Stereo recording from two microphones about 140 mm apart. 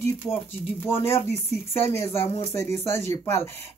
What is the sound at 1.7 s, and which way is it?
Speech, 15° left (ahead or behind).